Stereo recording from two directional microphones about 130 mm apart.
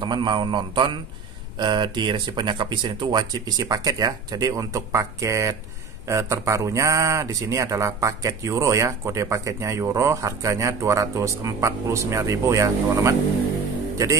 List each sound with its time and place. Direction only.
0.0 s speech: 35° right (ahead or behind)